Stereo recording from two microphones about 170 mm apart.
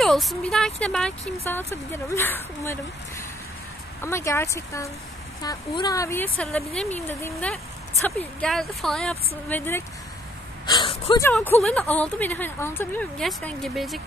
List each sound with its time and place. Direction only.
0.0 s speech: centre (ahead or behind)
10.7 s speech: 30° left (ahead or behind)
11.3 s speech: 5° left (ahead or behind)